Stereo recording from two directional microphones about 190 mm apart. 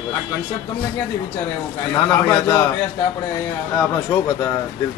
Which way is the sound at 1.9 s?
15° left (ahead or behind).